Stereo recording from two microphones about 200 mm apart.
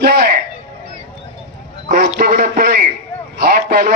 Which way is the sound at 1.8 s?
40° right (ahead or behind).